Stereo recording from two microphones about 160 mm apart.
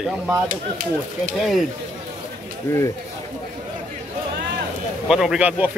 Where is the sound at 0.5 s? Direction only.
60° right (ahead or behind).